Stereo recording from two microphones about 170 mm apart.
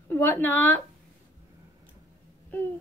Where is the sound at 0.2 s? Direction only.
10° left (ahead or behind).